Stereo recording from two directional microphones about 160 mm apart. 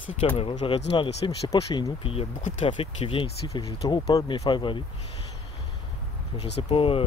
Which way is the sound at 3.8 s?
25° left (ahead or behind).